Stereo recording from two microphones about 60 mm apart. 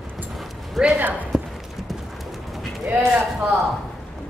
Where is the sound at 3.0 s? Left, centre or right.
Right.